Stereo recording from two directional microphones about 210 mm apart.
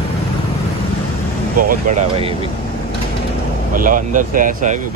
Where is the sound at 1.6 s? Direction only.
35° right (ahead or behind).